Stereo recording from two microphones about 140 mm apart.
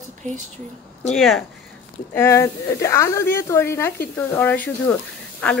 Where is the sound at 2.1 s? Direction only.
20° left (ahead or behind).